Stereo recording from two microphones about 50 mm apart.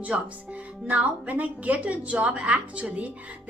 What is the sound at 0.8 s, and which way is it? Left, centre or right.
A woman's voice, right.